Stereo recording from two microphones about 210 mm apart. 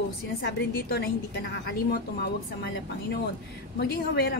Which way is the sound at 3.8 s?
50° left (ahead or behind).